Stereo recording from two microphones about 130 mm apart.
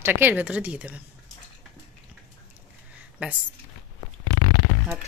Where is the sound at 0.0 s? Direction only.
15° right (ahead or behind).